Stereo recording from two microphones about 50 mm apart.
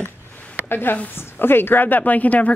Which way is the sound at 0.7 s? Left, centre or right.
Left.